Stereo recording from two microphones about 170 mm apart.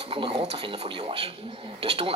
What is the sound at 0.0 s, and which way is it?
Speech, 35° right (ahead or behind).